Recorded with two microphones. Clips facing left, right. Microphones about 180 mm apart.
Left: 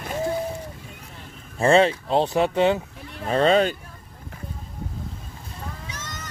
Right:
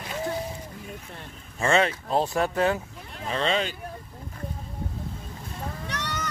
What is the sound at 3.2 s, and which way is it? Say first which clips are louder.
Speech: left 8 dB; 45° left (ahead or behind).